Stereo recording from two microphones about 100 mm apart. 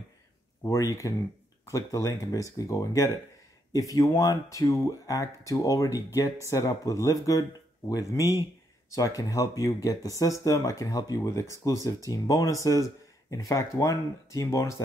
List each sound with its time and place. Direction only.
0.7 s speech: 30° left (ahead or behind)